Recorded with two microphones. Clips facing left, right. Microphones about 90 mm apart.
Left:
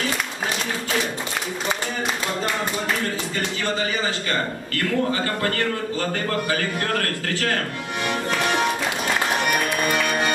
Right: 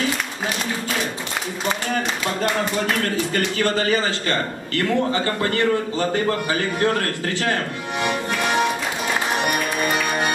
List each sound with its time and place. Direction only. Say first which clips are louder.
3.3 s a man's voice: right 4 dB; 50° right (ahead or behind)
4.3 s a man's voice: right 2 dB; 30° right (ahead or behind)